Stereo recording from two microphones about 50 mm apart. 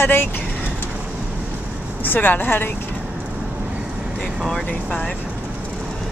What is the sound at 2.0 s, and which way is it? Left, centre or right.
Speech, left.